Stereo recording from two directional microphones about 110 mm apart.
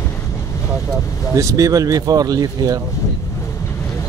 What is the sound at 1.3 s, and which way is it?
Speech, 30° right (ahead or behind).